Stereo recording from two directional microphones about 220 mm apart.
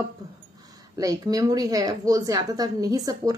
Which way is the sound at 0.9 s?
15° right (ahead or behind).